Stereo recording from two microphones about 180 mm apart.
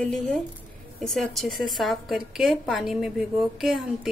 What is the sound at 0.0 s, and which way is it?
A woman's voice, 5° left (ahead or behind).